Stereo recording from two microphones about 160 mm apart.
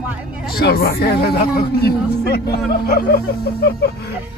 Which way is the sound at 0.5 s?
70° left (ahead or behind).